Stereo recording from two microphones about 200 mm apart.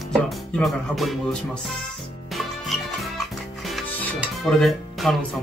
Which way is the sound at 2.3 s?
Centre (ahead or behind).